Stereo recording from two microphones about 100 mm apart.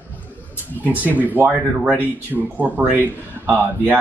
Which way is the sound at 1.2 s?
15° right (ahead or behind).